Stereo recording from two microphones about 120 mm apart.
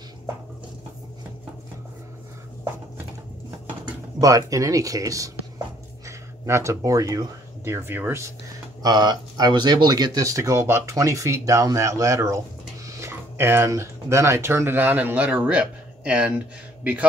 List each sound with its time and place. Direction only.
4.2 s speech: 30° right (ahead or behind)
8.8 s speech: 35° right (ahead or behind); by 16.3 s 10° right (ahead or behind)